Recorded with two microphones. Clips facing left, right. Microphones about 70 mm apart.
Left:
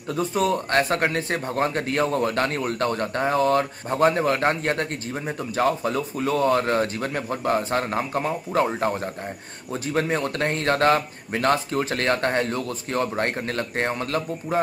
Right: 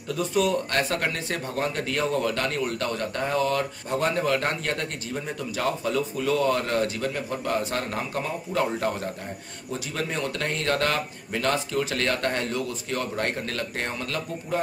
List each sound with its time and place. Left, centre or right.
0.1 s speech: left